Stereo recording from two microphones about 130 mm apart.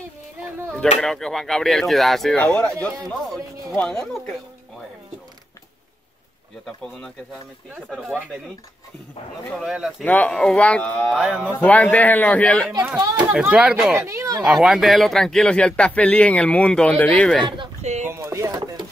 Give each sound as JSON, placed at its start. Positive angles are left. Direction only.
{"t": 1.0, "sound": "speech", "side_deg": 5}
{"t": 9.6, "sound": "speech", "side_deg": -5}
{"t": 10.0, "sound": "speech", "side_deg": 10}
{"t": 11.1, "sound": "speech", "side_deg": -5}
{"t": 11.6, "sound": "speech", "side_deg": 10}
{"t": 13.3, "sound": "speech", "side_deg": -10}
{"t": 14.0, "sound": "speech", "side_deg": -25}
{"t": 14.4, "sound": "speech", "side_deg": -5}
{"t": 17.8, "sound": "speech", "side_deg": -60}
{"t": 18.1, "sound": "speech", "side_deg": -20}
{"t": 18.5, "sound": "chopping", "side_deg": -40}